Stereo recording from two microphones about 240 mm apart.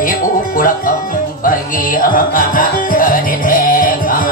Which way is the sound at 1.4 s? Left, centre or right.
Left.